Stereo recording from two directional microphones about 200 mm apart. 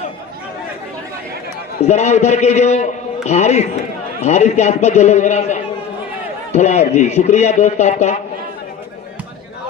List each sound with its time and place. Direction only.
1.9 s a man's voice: 35° left (ahead or behind)